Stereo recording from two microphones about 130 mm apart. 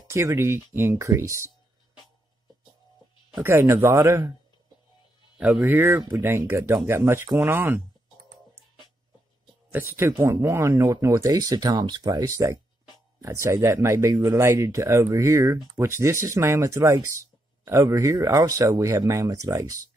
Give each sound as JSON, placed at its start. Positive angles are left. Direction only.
{"t": 0.1, "sound": "speech", "side_deg": -20}
{"t": 3.4, "sound": "speech", "side_deg": -20}
{"t": 5.4, "sound": "speech", "side_deg": -15}
{"t": 9.7, "sound": "speech", "side_deg": -20}